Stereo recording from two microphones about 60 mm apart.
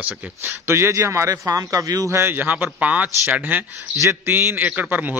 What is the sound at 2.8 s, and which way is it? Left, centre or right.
Speech, right.